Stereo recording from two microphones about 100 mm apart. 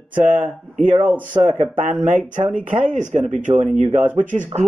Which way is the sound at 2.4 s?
90° right.